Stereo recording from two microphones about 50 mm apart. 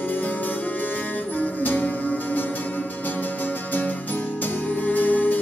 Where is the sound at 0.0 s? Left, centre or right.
Left.